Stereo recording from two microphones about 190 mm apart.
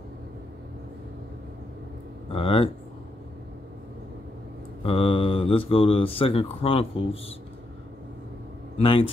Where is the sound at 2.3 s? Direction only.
30° left (ahead or behind).